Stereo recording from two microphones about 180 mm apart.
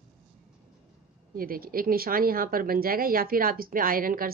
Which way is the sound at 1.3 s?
55° right (ahead or behind).